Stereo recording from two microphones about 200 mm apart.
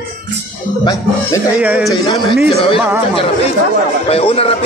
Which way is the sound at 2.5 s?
25° left (ahead or behind).